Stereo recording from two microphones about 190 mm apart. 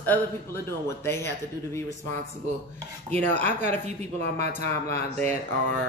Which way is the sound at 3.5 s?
40° right (ahead or behind).